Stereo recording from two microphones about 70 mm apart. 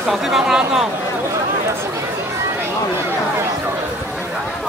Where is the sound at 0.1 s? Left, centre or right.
Centre.